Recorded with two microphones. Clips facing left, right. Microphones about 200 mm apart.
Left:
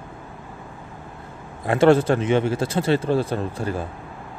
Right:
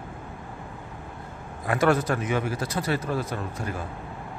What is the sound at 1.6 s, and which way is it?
Speech, 25° left (ahead or behind).